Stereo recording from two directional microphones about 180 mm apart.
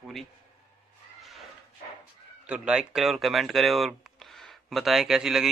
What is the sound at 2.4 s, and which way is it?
Speech, 5° right (ahead or behind).